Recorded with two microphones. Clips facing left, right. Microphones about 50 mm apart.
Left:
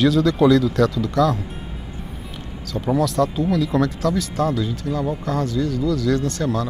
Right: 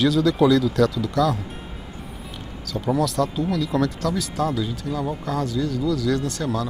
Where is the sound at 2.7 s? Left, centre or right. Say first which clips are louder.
Left 2 dB; centre.